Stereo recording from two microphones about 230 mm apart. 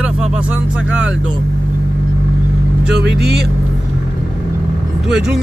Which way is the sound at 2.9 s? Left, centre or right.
Right.